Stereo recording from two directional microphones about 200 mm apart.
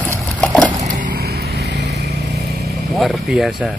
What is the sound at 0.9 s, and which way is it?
Vehicle, 45° right (ahead or behind).